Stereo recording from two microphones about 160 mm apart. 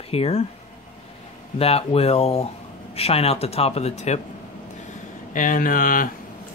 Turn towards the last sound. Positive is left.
turn(degrees=60)  # may be behind; listen again after turning